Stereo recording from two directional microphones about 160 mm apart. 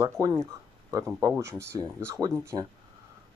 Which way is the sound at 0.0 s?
20° right (ahead or behind).